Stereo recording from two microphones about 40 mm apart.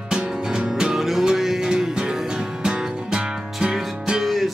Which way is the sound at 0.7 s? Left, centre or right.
Centre.